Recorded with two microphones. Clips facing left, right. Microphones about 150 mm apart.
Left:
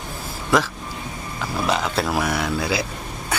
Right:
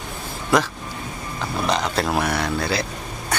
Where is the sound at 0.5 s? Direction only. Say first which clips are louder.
Even; centre (ahead or behind).